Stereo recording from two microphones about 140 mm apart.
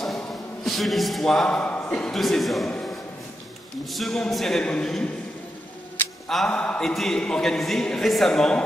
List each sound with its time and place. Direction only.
0.7 s a man's voice: centre (ahead or behind)
6.2 s a man's voice: 5° left (ahead or behind)